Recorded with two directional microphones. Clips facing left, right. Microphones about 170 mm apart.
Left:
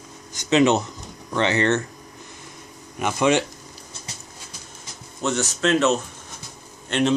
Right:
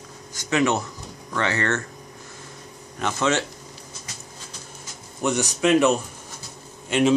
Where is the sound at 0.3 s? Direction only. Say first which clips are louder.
Left 4 dB; 20° left (ahead or behind).